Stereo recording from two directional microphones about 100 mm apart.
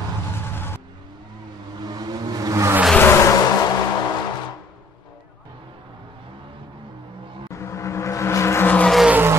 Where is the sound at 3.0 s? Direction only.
25° left (ahead or behind).